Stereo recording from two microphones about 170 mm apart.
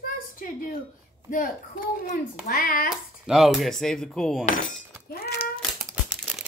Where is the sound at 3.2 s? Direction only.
Centre (ahead or behind).